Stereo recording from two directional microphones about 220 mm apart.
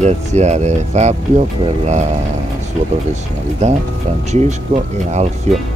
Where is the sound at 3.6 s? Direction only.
30° right (ahead or behind).